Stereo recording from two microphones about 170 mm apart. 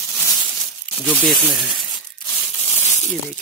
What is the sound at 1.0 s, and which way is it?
Speech, 5° right (ahead or behind).